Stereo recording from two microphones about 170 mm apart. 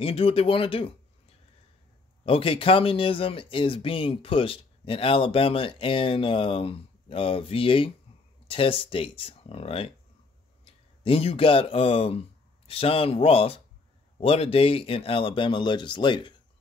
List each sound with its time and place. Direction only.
0.0 s speech: 35° left (ahead or behind)
2.2 s speech: 30° left (ahead or behind)